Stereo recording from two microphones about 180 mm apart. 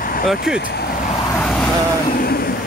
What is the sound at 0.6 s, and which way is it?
Speech, 65° left (ahead or behind).